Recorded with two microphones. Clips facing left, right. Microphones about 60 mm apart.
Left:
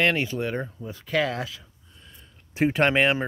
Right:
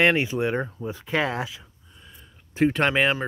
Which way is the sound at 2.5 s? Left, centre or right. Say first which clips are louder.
Even; centre.